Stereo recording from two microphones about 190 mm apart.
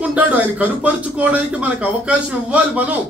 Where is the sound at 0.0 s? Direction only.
10° right (ahead or behind).